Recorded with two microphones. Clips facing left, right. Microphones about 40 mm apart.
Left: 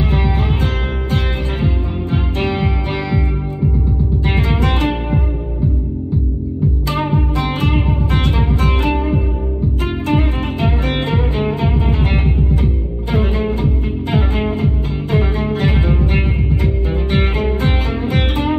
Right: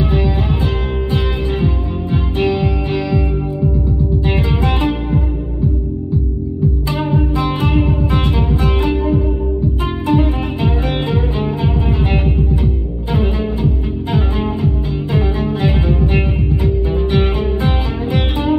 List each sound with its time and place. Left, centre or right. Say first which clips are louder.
0.0 s music: right 1 dB; left
4.4 s music: even; left
6.9 s music: even; left